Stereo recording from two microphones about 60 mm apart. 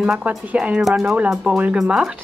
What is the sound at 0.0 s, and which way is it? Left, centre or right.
A woman's voice, centre.